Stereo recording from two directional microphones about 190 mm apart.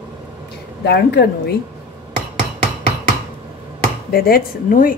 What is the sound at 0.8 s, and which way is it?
Speech, 60° left (ahead or behind).